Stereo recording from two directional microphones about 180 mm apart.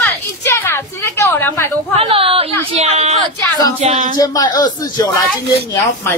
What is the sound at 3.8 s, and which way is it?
Child singing, 40° right (ahead or behind).